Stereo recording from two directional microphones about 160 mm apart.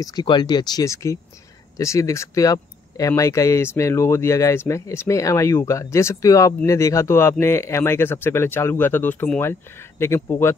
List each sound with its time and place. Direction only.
0.0 s speech: 25° left (ahead or behind)